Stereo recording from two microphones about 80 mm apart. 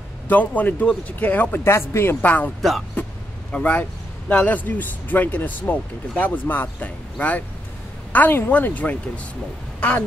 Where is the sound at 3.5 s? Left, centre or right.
Left.